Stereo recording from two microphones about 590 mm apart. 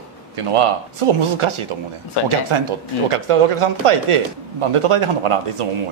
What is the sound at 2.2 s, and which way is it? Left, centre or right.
Speech, left.